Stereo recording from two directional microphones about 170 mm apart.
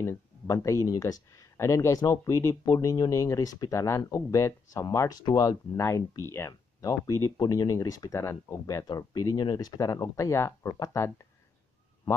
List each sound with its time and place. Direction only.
0.0 s speech: 15° left (ahead or behind)